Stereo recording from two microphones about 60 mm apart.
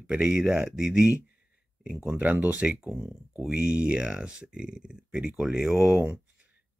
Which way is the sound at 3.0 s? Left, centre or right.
Right.